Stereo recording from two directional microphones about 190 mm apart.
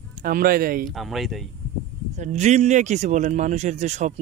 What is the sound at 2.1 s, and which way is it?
Speech, 40° right (ahead or behind).